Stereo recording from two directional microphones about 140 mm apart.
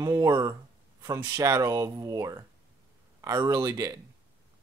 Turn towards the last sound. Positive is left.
turn(degrees=-25)  # may be behind; listen again after turning